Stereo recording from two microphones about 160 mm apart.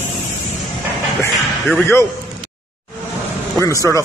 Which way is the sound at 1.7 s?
15° left (ahead or behind).